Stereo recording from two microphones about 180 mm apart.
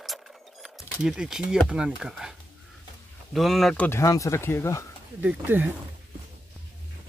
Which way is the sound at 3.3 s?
Centre (ahead or behind).